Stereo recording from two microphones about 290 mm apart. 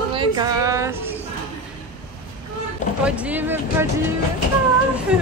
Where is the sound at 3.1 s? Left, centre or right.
Centre.